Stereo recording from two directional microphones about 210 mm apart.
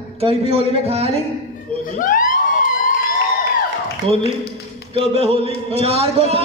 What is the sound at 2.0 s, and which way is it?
Emergency vehicle, 40° left (ahead or behind).